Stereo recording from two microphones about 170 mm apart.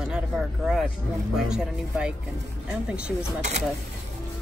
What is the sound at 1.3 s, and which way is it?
Speech, 5° right (ahead or behind).